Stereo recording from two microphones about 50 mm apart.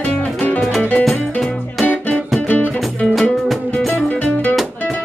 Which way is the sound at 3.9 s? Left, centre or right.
Left.